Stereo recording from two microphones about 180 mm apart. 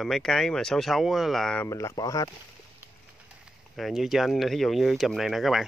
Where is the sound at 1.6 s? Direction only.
15° left (ahead or behind).